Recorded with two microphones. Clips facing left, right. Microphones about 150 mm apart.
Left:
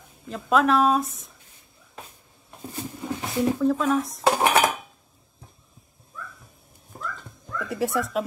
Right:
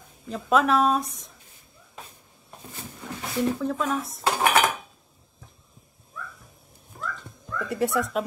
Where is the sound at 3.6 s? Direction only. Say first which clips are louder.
Left 5 dB; centre (ahead or behind).